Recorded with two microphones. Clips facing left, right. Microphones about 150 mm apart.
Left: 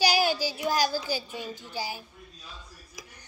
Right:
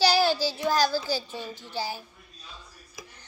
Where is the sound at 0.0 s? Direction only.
15° left (ahead or behind).